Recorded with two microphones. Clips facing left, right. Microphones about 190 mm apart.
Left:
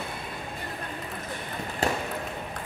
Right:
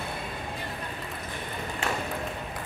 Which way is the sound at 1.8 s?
35° left (ahead or behind).